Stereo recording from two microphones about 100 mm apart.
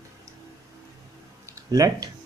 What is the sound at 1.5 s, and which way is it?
Speech, 35° right (ahead or behind).